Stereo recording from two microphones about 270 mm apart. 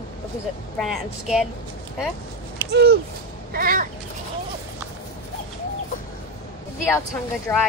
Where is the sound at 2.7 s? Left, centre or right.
Right.